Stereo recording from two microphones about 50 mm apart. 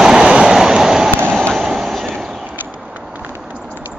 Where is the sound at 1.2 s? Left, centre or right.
Right.